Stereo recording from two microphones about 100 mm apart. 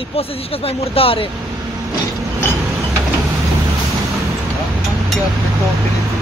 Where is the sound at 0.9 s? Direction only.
70° left (ahead or behind).